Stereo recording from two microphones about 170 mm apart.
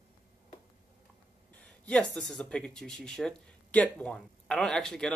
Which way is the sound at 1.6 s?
5° left (ahead or behind).